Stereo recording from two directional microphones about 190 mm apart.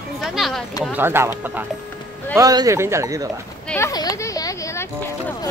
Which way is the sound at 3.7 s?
15° left (ahead or behind).